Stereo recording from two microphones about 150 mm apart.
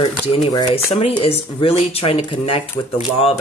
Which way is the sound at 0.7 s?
40° left (ahead or behind).